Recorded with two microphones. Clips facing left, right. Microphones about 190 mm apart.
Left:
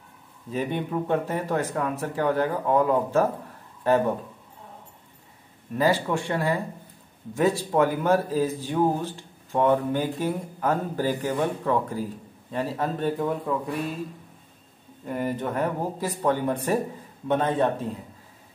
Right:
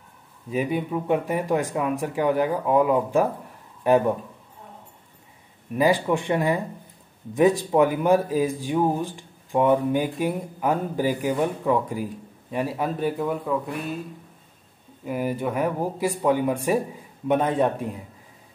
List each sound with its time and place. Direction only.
0.5 s speech: 10° right (ahead or behind)
5.8 s speech: 15° right (ahead or behind)
15.0 s speech: 5° right (ahead or behind)